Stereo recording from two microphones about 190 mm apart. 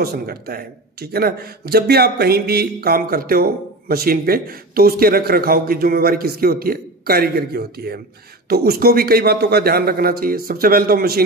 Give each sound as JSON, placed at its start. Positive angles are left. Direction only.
{"t": 0.0, "sound": "speech", "side_deg": -55}